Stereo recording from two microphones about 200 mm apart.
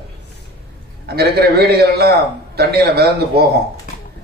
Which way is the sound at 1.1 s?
55° right (ahead or behind).